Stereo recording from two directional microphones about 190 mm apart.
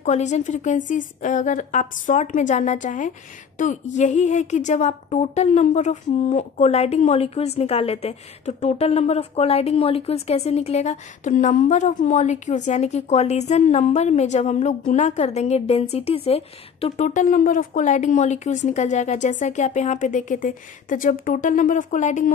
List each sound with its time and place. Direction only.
0.0 s a woman's voice: 40° left (ahead or behind)